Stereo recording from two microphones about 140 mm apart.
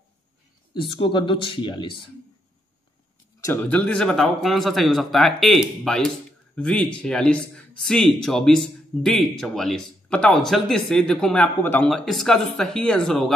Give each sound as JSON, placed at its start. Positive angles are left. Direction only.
{"t": 0.7, "sound": "speech", "side_deg": 40}
{"t": 3.6, "sound": "speech", "side_deg": 10}